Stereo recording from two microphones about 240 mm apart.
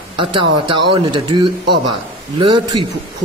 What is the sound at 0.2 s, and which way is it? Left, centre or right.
A man's voice, right.